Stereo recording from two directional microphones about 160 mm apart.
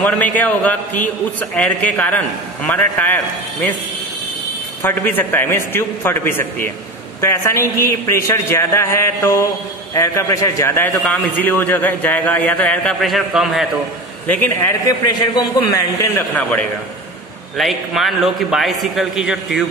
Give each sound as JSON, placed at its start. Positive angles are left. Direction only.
{"t": 0.0, "sound": "a man's voice", "side_deg": 10}
{"t": 4.8, "sound": "a man's voice", "side_deg": 10}
{"t": 14.2, "sound": "a man's voice", "side_deg": 10}
{"t": 14.9, "sound": "a man's voice", "side_deg": 25}
{"t": 17.6, "sound": "a man's voice", "side_deg": 0}